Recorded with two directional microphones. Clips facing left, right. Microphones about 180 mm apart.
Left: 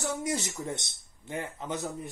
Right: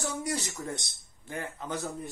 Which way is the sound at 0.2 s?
20° left (ahead or behind).